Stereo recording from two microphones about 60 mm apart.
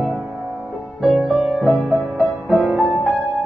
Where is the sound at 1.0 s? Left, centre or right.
Centre.